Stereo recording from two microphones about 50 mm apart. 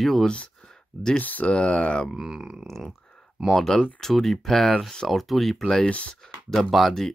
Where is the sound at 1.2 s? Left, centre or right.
Left.